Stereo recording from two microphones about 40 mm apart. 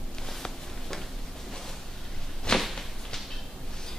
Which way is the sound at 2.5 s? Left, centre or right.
Centre.